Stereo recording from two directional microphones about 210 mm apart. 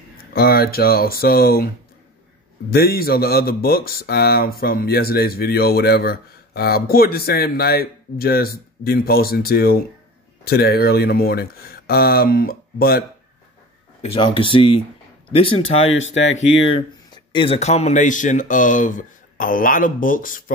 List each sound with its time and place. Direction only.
0.3 s speech: 45° left (ahead or behind)
2.7 s speech: 45° left (ahead or behind)
14.0 s speech: 25° left (ahead or behind)
16.0 s speech: 65° left (ahead or behind)
16.3 s speech: 30° left (ahead or behind)